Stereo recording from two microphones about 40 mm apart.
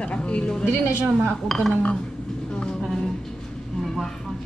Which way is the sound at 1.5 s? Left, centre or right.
Centre.